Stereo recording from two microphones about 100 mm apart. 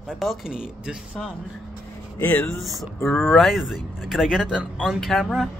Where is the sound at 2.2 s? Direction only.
20° left (ahead or behind).